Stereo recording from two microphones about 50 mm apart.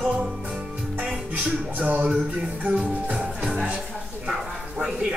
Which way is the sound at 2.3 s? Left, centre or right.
Right.